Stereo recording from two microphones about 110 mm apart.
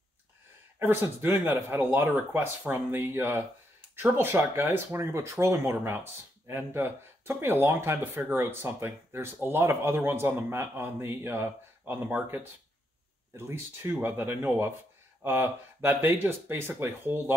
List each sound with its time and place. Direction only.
0.7 s speech: 20° right (ahead or behind)
13.4 s speech: 25° right (ahead or behind)